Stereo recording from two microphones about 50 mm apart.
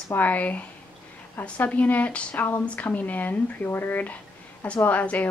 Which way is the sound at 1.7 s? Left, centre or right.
Left.